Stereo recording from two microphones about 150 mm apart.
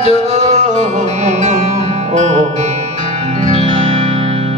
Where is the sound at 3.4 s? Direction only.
40° left (ahead or behind).